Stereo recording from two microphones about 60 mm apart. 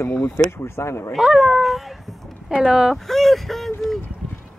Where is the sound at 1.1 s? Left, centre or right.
Centre.